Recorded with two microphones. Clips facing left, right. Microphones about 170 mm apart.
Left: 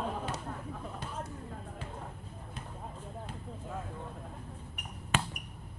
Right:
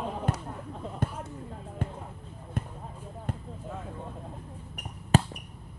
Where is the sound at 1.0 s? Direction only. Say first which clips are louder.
Right 10 dB; 50° right (ahead or behind).